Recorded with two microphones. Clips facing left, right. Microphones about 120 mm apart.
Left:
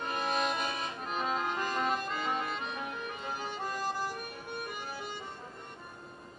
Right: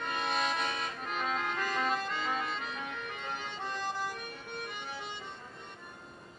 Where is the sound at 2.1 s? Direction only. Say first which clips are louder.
Left 1 dB; 10° left (ahead or behind).